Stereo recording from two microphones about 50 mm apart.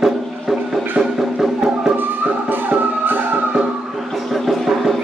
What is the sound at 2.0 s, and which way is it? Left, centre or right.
Music, right.